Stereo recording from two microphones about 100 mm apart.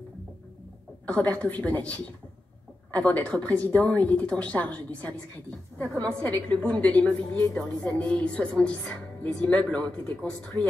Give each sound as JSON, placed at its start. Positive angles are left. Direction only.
{"t": 1.0, "sound": "speech", "side_deg": 15}